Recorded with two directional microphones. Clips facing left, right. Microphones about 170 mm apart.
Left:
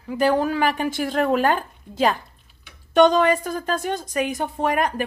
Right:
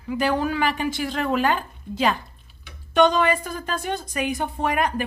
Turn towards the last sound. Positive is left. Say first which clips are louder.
# left 1 dB
turn(degrees=40)  # may be behind; listen again after turning